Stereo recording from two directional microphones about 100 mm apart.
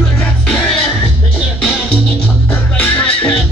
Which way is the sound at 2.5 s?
15° left (ahead or behind).